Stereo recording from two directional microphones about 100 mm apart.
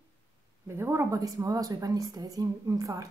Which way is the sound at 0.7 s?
25° right (ahead or behind).